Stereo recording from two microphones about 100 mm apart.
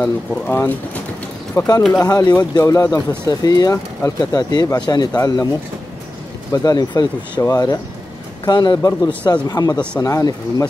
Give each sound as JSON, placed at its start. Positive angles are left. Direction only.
{"t": 0.0, "sound": "speech", "side_deg": 20}
{"t": 1.6, "sound": "speech", "side_deg": 35}
{"t": 6.5, "sound": "a man's voice", "side_deg": 40}